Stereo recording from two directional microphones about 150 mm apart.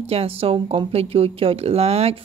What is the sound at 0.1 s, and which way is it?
Speech, 40° right (ahead or behind).